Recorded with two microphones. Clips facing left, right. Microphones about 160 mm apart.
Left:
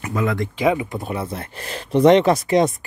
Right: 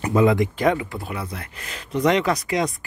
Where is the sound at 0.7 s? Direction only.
20° left (ahead or behind).